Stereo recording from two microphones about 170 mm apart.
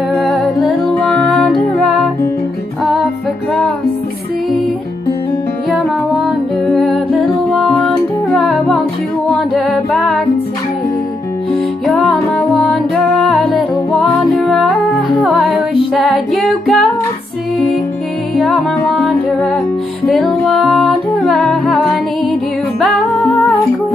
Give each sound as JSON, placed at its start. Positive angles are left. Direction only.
{"t": 0.1, "sound": "music", "side_deg": 0}
{"t": 6.2, "sound": "music", "side_deg": 0}
{"t": 11.9, "sound": "music", "side_deg": 0}
{"t": 18.3, "sound": "music", "side_deg": 5}
{"t": 22.8, "sound": "music", "side_deg": 0}